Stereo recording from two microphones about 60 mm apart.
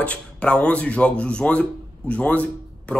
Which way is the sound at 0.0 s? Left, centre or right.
Centre.